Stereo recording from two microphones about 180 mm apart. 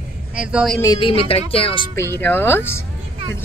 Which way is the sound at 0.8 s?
25° left (ahead or behind).